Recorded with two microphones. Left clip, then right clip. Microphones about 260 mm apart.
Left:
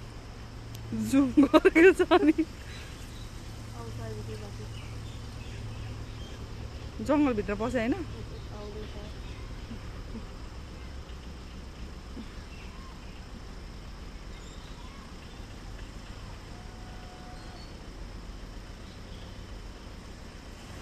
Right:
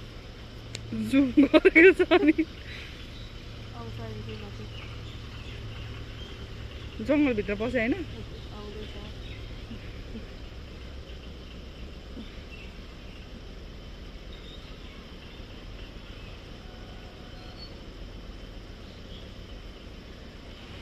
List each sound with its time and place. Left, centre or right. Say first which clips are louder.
0.7 s speech: right 1 dB; centre
7.1 s speech: right 1 dB; centre